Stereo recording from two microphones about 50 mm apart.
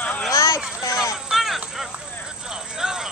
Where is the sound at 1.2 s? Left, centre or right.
Centre.